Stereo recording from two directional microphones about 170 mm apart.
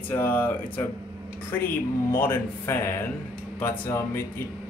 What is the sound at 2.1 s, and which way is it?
Speech, 15° left (ahead or behind).